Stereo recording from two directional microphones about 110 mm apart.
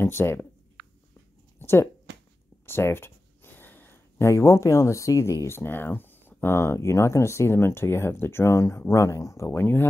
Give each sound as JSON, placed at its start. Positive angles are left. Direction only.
{"t": 0.0, "sound": "speech", "side_deg": 20}
{"t": 1.6, "sound": "a sound", "side_deg": 20}
{"t": 2.6, "sound": "speech", "side_deg": 20}